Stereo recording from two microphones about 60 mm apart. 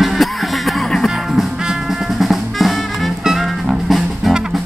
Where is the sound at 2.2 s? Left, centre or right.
Centre.